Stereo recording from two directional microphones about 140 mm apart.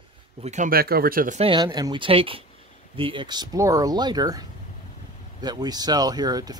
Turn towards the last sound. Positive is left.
turn(degrees=-30)  # may be behind; listen again after turning